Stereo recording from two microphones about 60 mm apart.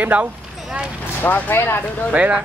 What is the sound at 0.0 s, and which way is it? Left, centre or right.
Speech, right.